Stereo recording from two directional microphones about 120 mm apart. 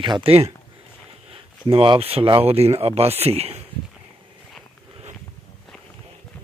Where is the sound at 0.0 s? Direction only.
45° right (ahead or behind).